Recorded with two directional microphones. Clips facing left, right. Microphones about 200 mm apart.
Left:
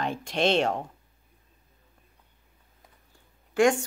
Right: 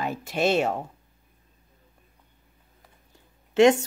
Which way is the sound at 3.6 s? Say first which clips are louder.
Right 4 dB; 25° right (ahead or behind).